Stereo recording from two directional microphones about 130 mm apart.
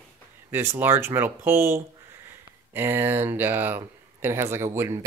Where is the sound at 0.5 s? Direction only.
15° right (ahead or behind).